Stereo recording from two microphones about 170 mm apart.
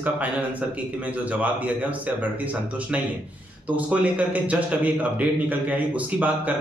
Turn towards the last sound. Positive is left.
turn(degrees=-10)  # may be behind; listen again after turning